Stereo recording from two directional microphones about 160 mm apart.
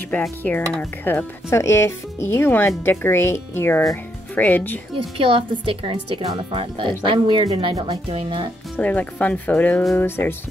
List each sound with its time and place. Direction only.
0.1 s speech: 10° left (ahead or behind)
5.2 s speech: 35° right (ahead or behind)
8.7 s speech: 10° left (ahead or behind)